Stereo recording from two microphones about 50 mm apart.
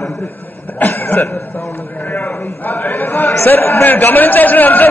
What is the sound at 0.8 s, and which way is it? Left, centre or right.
Speech, left.